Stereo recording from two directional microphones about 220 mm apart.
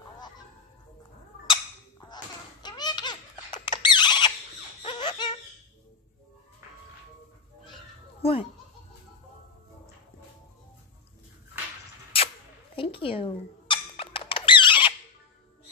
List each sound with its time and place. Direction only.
1.5 s baby laughter: 20° left (ahead or behind)
8.2 s speech: 25° left (ahead or behind)
12.7 s a sound: 25° left (ahead or behind)